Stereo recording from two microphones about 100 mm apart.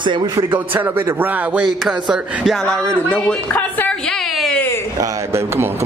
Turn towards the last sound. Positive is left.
turn(degrees=15)  # may be behind; listen again after turning